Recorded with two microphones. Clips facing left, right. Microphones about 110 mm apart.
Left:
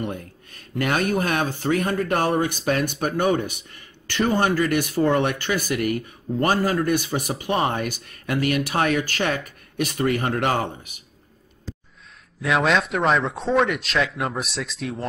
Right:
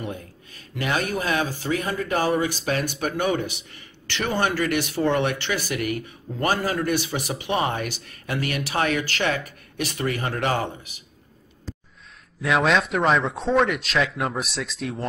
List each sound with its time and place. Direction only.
0.0 s speech: 50° left (ahead or behind)
12.4 s speech: centre (ahead or behind)